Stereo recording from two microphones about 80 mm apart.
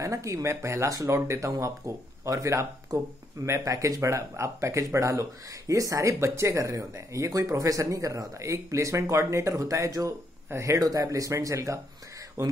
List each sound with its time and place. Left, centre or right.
0.0 s speech: right